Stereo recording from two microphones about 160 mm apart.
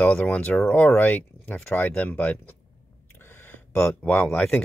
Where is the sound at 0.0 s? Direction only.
10° left (ahead or behind).